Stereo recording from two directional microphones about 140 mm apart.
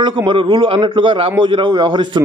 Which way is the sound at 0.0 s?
35° right (ahead or behind).